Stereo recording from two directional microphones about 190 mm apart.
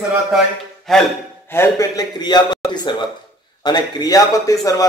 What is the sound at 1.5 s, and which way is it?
A man's voice, 15° left (ahead or behind).